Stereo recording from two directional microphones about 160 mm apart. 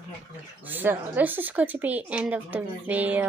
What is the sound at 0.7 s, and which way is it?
Speech, 10° right (ahead or behind).